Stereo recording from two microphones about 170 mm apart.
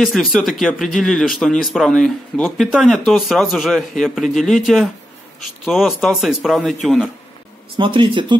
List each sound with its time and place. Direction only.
0.0 s speech: centre (ahead or behind)
7.7 s speech: 30° right (ahead or behind)